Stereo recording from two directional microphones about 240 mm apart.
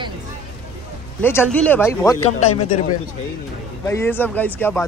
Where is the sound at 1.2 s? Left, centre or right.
Centre.